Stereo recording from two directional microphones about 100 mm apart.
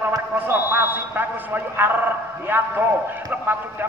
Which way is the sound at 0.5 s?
25° right (ahead or behind).